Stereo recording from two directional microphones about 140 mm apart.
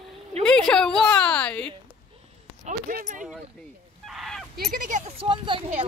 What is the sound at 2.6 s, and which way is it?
Speech, 75° right (ahead or behind).